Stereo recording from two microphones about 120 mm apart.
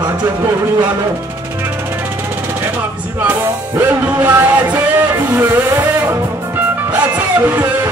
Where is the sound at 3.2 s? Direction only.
15° right (ahead or behind).